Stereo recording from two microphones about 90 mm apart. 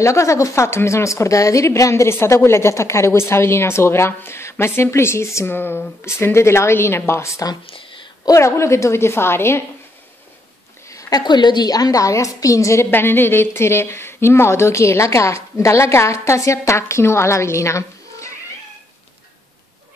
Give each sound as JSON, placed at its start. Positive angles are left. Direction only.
{"t": 0.0, "sound": "a woman's voice", "side_deg": 35}
{"t": 7.6, "sound": "a sound", "side_deg": 75}
{"t": 8.3, "sound": "a woman's voice", "side_deg": 35}
{"t": 10.9, "sound": "a woman's voice", "side_deg": 40}